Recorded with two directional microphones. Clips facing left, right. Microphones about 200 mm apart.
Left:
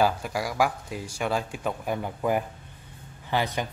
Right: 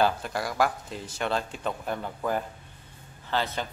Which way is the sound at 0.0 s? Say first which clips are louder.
Left 1 dB; 10° left (ahead or behind).